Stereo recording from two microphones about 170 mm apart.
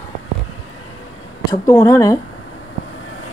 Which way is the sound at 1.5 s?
20° left (ahead or behind).